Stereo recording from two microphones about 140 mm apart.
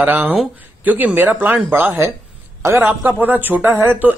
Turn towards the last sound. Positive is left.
turn(degrees=-15)  # may be behind; listen again after turning